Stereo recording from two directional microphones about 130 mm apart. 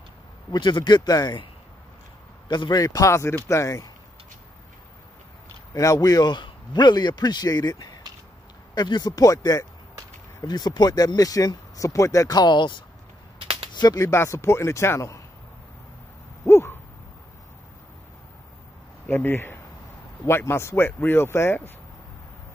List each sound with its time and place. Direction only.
0.5 s a man's voice: 35° left (ahead or behind)
5.8 s a man's voice: 25° left (ahead or behind)
13.4 s a sound: 45° right (ahead or behind)
13.7 s speech: 30° left (ahead or behind)
16.4 s owl: 20° left (ahead or behind)
19.0 s speech: 15° left (ahead or behind)